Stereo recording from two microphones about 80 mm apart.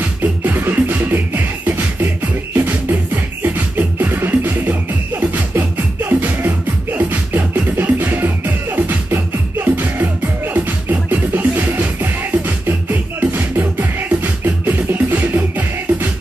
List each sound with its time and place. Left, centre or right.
0.0 s music: right